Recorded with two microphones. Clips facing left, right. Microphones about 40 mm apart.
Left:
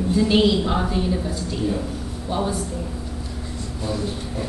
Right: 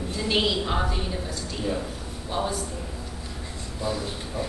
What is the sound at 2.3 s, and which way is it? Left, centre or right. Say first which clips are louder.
Speech: left 4 dB; centre.